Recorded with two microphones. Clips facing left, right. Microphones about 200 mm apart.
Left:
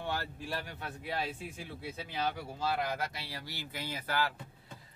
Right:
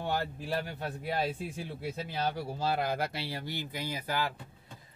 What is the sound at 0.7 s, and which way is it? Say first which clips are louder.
Speech: right 5 dB; 35° right (ahead or behind).